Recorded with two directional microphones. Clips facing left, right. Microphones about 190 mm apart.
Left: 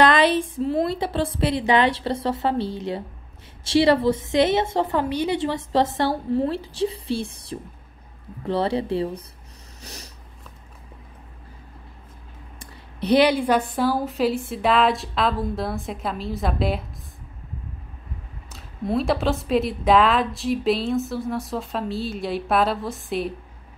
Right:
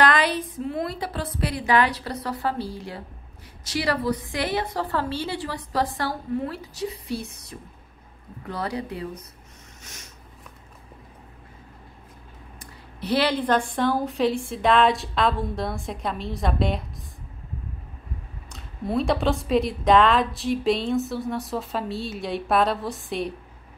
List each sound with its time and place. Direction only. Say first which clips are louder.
0.0 s a woman's voice: left 4 dB; 25° left (ahead or behind)
9.8 s snort: left 7 dB; 35° left (ahead or behind)
12.5 s a sound: left 7 dB; 20° left (ahead or behind)
13.7 s a woman's voice: left 1 dB; 5° left (ahead or behind)
18.5 s a woman's voice: left 2 dB; centre (ahead or behind)